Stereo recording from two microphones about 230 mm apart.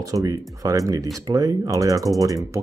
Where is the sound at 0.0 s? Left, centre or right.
Centre.